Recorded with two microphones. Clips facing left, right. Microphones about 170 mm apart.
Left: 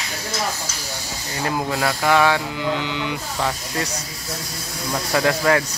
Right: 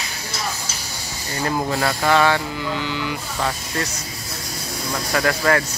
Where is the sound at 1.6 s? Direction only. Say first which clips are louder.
Even; 5° left (ahead or behind).